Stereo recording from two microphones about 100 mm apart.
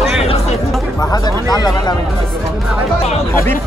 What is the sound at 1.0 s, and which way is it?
Speech, 40° left (ahead or behind).